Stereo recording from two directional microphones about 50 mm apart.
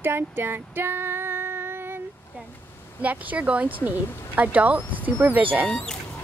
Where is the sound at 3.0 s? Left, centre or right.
Right.